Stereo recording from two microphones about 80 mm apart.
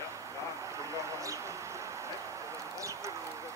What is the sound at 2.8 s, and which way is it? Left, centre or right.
Clip-clop, right.